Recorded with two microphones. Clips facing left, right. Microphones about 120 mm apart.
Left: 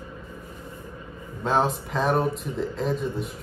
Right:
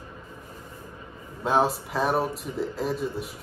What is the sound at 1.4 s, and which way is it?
Speech, 5° right (ahead or behind).